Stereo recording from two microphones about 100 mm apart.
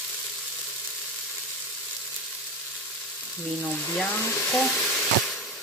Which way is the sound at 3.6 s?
5° left (ahead or behind).